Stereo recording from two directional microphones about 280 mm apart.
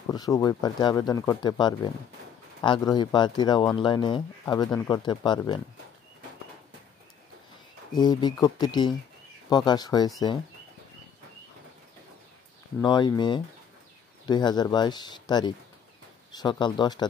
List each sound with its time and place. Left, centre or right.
0.1 s speech: centre
7.9 s speech: centre
12.8 s speech: centre